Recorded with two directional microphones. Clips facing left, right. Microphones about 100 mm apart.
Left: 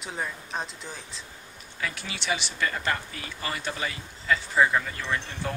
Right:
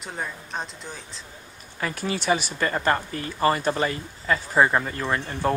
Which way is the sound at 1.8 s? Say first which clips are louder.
Right 7 dB; 40° right (ahead or behind).